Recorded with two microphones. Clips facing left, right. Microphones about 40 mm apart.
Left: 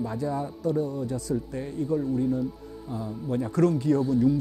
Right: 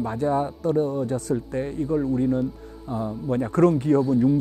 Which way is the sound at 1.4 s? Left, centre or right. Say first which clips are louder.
Right 3 dB; right.